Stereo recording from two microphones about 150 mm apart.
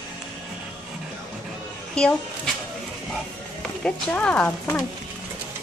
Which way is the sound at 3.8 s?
10° left (ahead or behind).